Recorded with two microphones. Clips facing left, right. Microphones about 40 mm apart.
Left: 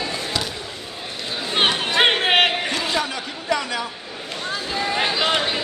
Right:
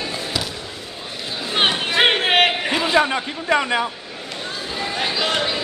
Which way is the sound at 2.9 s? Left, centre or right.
Right.